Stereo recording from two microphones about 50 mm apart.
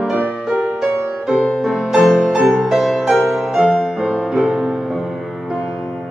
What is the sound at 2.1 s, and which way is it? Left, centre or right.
Music, centre.